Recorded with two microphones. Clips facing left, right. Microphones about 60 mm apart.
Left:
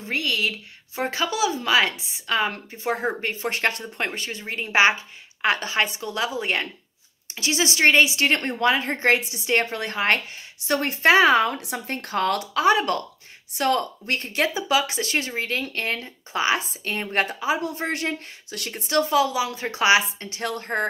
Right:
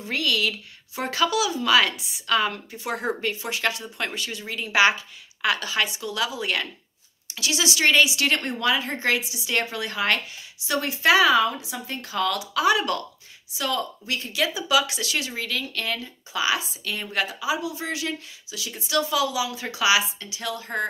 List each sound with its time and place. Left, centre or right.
0.0 s speech: left
11.4 s speech: left
13.5 s speech: left